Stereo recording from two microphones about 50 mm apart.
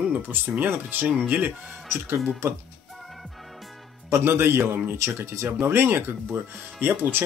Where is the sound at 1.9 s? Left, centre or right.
Right.